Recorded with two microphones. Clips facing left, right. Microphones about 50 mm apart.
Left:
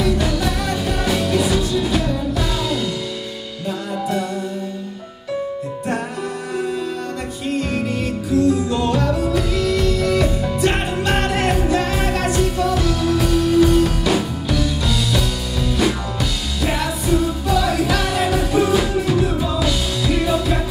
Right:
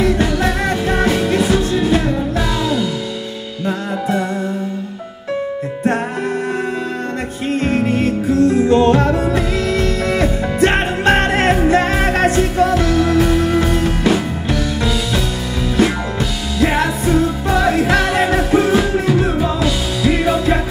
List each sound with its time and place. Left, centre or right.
0.0 s music: right
7.5 s music: right